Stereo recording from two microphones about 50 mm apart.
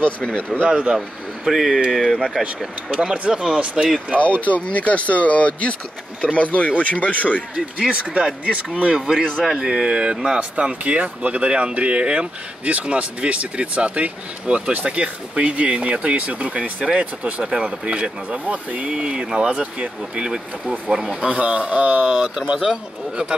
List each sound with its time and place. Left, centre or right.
0.0 s speech: left
0.7 s speech: centre
0.9 s speech: centre
3.4 s speech: centre
4.6 s speech: left
7.5 s speech: centre
18.9 s speech: centre
21.3 s speech: right